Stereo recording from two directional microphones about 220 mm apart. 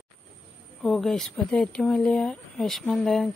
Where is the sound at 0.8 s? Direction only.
Centre (ahead or behind).